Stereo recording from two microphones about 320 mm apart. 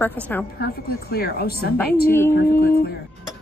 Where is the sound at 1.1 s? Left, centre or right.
Left.